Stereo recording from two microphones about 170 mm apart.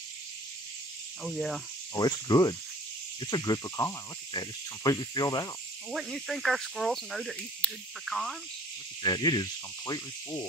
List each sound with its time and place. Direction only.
1.2 s speech: centre (ahead or behind)
2.0 s speech: 25° left (ahead or behind)
5.9 s speech: centre (ahead or behind)
9.0 s speech: 25° left (ahead or behind)